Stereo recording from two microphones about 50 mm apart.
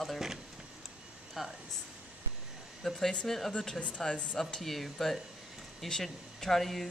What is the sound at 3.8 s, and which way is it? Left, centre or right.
Speech, left.